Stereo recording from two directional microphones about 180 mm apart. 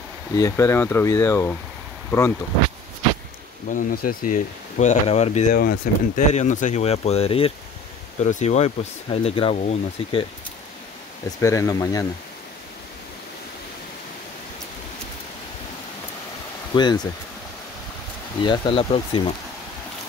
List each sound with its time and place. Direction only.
0.4 s speech: 15° left (ahead or behind)
3.7 s speech: 50° left (ahead or behind)
5.5 s speech: 55° left (ahead or behind); by 10.2 s 35° left (ahead or behind)
11.4 s speech: 15° left (ahead or behind)
16.7 s speech: 25° left (ahead or behind)
18.4 s speech: 30° left (ahead or behind)